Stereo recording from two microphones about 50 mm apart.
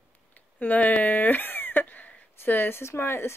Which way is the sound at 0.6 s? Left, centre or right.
Left.